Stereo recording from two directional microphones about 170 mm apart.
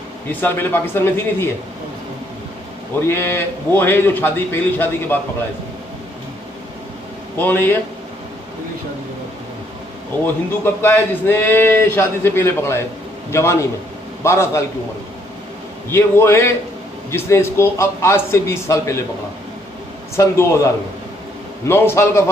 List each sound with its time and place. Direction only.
0.3 s speech: 10° left (ahead or behind)
3.1 s speech: 15° left (ahead or behind)
7.3 s speech: 10° left (ahead or behind)
10.2 s speech: 15° left (ahead or behind)
15.9 s speech: 15° left (ahead or behind)
20.2 s speech: 15° left (ahead or behind)